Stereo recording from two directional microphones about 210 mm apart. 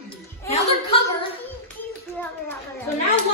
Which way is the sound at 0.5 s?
30° left (ahead or behind).